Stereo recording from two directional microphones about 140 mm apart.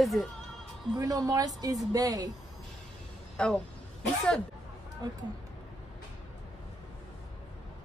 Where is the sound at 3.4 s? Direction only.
5° left (ahead or behind).